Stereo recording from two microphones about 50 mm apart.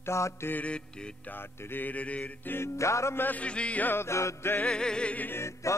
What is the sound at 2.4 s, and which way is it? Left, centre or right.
Music, left.